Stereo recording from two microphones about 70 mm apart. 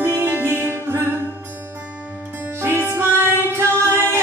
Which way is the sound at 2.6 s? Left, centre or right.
Right.